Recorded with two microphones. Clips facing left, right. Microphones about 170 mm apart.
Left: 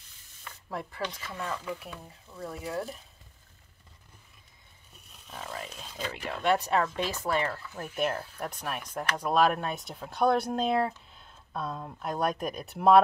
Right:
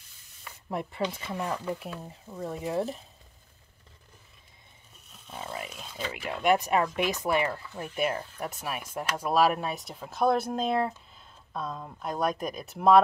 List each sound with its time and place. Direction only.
0.7 s speech: 20° right (ahead or behind)
2.0 s speech: 25° right (ahead or behind)
5.6 s speech: 5° right (ahead or behind)